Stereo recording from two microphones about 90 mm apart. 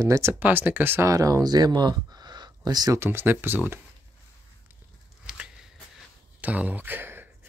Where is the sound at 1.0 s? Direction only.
40° right (ahead or behind).